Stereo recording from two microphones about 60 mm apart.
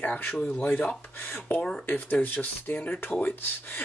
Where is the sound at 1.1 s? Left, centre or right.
Left.